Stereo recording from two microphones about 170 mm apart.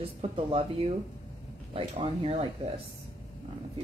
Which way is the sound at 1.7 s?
30° right (ahead or behind).